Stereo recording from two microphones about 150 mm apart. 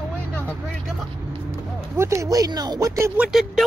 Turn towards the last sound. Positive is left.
turn(degrees=0)  # may be behind; listen again after turning